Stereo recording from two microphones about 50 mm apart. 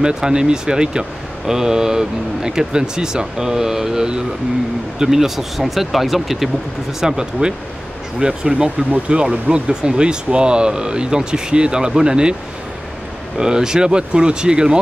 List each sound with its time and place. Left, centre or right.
0.0 s speech: centre
13.4 s speech: centre